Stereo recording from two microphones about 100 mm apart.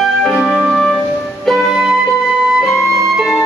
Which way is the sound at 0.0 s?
Centre (ahead or behind).